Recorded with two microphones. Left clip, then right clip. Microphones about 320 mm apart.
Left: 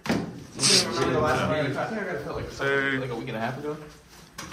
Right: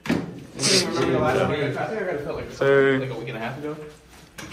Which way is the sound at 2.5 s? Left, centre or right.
Centre.